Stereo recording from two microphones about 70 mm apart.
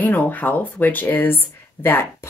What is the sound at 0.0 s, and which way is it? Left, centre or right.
Speech, left.